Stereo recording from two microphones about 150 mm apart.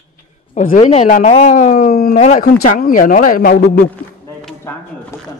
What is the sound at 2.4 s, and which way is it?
Speech, 65° left (ahead or behind).